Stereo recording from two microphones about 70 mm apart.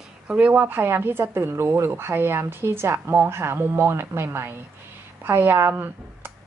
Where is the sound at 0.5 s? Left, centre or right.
Right.